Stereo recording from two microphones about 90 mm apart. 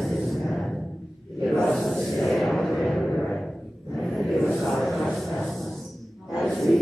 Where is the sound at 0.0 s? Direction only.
Centre (ahead or behind).